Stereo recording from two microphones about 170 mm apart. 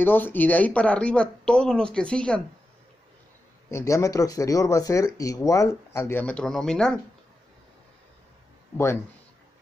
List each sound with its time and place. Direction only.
0.0 s speech: 10° left (ahead or behind)
3.7 s speech: 15° left (ahead or behind)